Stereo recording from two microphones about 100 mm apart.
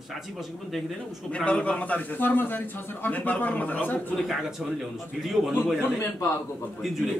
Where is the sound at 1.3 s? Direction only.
15° left (ahead or behind).